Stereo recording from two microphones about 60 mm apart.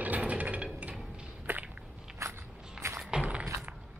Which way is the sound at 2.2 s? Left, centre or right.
Right.